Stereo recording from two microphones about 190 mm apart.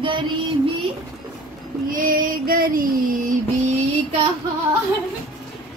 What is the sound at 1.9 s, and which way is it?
Female singing, 50° right (ahead or behind).